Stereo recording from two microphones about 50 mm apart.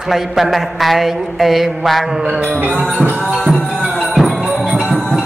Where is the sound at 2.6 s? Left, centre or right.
Right.